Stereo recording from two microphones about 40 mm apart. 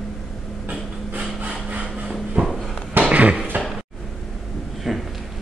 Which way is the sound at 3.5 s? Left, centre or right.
Right.